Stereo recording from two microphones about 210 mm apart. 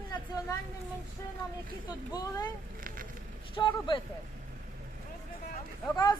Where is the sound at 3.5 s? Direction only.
20° left (ahead or behind).